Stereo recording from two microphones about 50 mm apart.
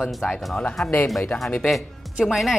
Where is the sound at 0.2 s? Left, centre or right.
Centre.